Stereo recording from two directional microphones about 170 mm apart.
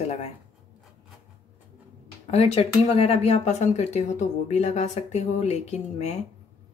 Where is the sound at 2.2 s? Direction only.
35° left (ahead or behind).